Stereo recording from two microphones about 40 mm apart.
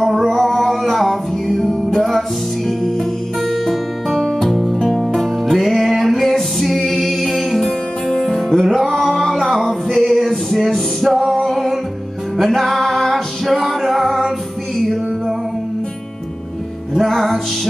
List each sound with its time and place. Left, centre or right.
0.0 s music: centre
17.0 s music: centre